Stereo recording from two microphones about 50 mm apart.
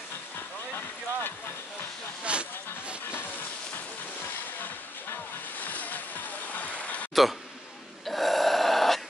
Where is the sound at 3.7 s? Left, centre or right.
Left.